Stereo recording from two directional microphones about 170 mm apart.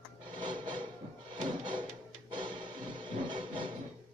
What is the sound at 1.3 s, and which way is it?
Drawer open or close, 30° right (ahead or behind).